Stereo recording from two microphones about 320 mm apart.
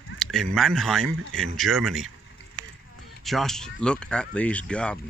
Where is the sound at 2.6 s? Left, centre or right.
Right.